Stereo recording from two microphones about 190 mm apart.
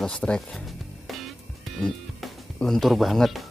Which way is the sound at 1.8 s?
Centre (ahead or behind).